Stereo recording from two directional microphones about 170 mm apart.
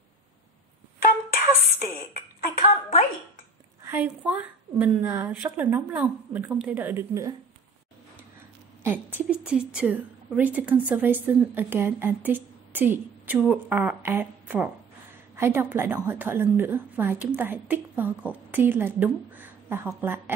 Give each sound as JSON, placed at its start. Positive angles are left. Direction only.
{"t": 2.4, "sound": "a sound", "side_deg": 40}
{"t": 3.8, "sound": "a woman's voice", "side_deg": -10}
{"t": 8.8, "sound": "a woman's voice", "side_deg": -10}